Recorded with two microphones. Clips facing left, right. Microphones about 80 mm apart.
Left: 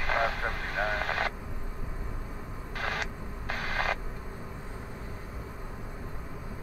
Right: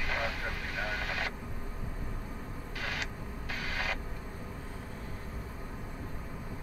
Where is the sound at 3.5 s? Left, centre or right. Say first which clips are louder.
Left 5 dB; left.